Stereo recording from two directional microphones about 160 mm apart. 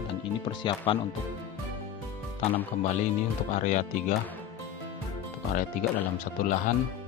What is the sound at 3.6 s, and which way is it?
Speech, 55° left (ahead or behind).